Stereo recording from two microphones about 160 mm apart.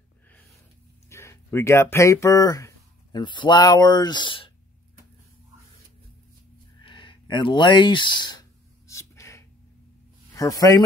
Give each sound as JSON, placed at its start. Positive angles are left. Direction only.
{"t": 1.0, "sound": "speech", "side_deg": 15}
{"t": 6.8, "sound": "a sound", "side_deg": 30}
{"t": 10.3, "sound": "speech", "side_deg": 20}